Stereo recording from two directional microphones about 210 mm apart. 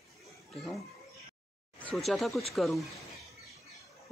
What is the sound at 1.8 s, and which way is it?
Speech, centre (ahead or behind).